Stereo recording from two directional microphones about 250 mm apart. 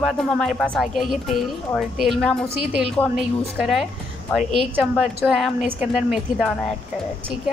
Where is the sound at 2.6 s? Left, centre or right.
Right.